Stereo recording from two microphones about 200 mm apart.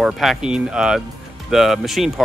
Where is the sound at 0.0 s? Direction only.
Centre (ahead or behind).